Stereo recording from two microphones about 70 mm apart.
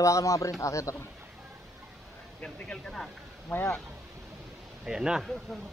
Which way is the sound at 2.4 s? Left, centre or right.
Centre.